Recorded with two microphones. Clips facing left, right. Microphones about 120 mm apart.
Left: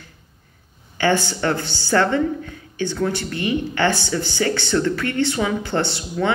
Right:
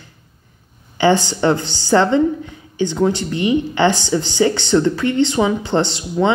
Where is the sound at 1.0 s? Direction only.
20° right (ahead or behind).